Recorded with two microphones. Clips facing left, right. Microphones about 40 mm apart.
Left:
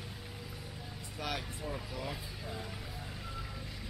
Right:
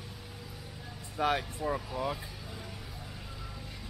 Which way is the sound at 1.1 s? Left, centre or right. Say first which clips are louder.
Right 9 dB; right.